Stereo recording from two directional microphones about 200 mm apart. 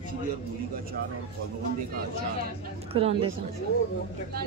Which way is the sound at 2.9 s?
30° right (ahead or behind).